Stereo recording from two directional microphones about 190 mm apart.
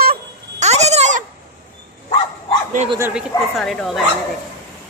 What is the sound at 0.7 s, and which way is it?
Goat, 35° right (ahead or behind).